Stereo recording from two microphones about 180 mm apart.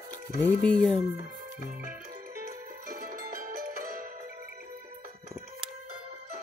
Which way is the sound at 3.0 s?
50° right (ahead or behind).